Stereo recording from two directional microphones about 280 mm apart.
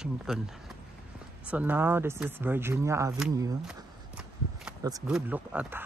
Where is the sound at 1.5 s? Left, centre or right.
Centre.